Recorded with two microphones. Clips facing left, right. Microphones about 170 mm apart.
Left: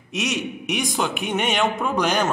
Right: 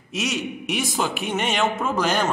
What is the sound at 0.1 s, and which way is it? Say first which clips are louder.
A man's voice: left 1 dB; centre (ahead or behind).